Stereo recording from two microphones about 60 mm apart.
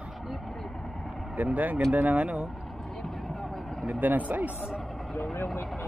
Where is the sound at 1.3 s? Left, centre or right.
Right.